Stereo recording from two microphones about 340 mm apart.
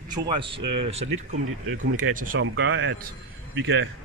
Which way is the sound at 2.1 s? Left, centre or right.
Right.